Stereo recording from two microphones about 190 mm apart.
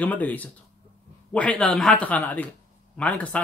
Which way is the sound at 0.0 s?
10° left (ahead or behind).